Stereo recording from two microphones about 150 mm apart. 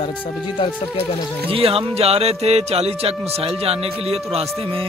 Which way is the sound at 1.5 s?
40° right (ahead or behind).